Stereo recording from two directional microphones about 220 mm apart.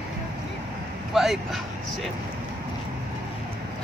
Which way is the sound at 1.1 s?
Centre (ahead or behind).